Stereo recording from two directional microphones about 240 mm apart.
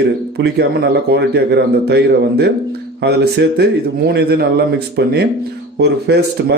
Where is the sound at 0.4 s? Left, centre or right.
Right.